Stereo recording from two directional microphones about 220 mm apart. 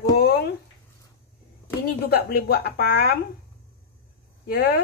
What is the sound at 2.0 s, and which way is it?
A woman's voice, 45° left (ahead or behind).